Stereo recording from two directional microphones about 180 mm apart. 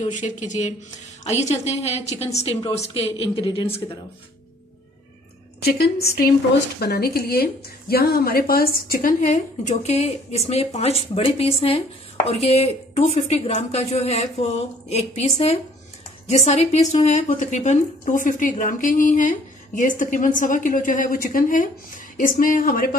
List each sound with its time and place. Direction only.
0.0 s a woman's voice: 45° left (ahead or behind)
6.8 s a woman's voice: 60° left (ahead or behind)